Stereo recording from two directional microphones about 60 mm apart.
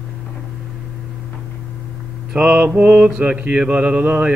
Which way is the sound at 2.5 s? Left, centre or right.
Right.